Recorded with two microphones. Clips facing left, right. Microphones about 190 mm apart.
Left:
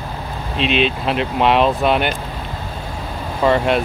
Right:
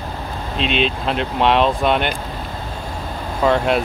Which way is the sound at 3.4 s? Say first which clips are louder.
Left 1 dB; centre (ahead or behind).